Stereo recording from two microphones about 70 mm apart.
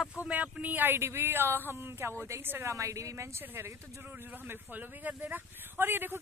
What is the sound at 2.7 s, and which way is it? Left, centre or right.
A woman's voice, right.